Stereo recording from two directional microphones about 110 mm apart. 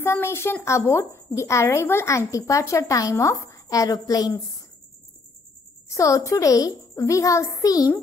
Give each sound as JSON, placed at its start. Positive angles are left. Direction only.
{"t": 0.0, "sound": "a woman's voice", "side_deg": 20}
{"t": 5.9, "sound": "a woman's voice", "side_deg": 30}